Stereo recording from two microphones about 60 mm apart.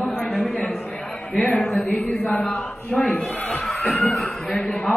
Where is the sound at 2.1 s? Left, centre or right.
Left.